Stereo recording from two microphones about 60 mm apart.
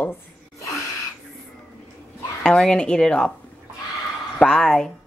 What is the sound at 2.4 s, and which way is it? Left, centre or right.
Speech, centre.